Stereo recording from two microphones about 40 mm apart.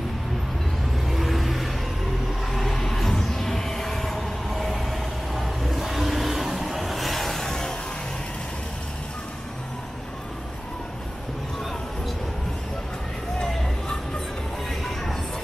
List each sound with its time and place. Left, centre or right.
1.0 s vehicle: centre
2.5 s music: centre
13.4 s a sound: left